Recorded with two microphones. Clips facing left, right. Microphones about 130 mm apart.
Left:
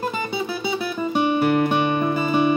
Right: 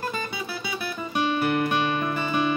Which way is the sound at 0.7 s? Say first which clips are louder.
Left 7 dB; 25° left (ahead or behind).